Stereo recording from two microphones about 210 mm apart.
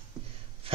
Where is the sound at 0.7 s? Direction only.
25° right (ahead or behind).